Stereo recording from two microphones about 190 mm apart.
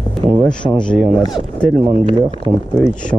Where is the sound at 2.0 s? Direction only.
25° right (ahead or behind).